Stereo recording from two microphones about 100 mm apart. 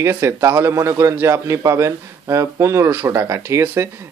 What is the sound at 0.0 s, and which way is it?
A man's voice, 25° right (ahead or behind).